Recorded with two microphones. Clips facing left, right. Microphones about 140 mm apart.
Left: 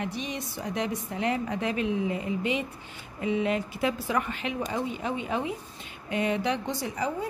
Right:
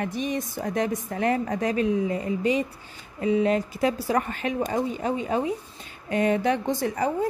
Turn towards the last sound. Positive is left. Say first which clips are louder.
# right 5 dB
turn(degrees=-50)  # may be behind; listen again after turning